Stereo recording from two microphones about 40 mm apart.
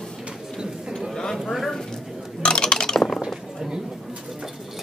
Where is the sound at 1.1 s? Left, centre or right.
Centre.